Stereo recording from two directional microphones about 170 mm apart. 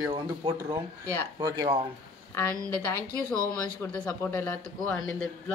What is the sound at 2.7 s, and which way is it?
Speech, 10° left (ahead or behind).